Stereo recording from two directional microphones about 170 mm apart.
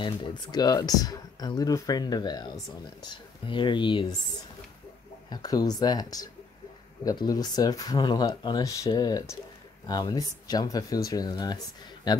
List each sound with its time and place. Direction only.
0.0 s speech: 25° left (ahead or behind)
5.3 s speech: 20° left (ahead or behind)